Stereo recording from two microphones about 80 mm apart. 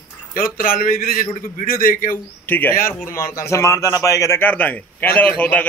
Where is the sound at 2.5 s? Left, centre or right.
Left.